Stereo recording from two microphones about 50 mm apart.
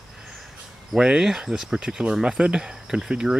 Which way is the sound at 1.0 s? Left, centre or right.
Centre.